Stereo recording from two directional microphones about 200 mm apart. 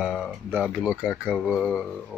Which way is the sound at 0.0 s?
Centre (ahead or behind).